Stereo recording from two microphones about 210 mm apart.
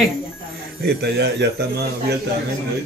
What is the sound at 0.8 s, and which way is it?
A man's voice, 50° right (ahead or behind).